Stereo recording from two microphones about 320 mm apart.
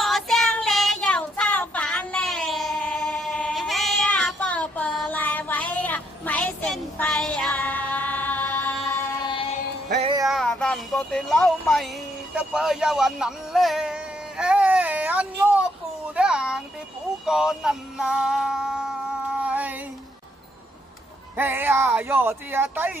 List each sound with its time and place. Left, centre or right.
0.0 s child singing: centre
10.2 s speech: centre
12.4 s a sound: centre
17.3 s music: centre
19.4 s a sound: centre
21.4 s speech: centre